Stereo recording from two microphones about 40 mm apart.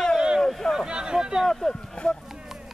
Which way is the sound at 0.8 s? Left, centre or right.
Right.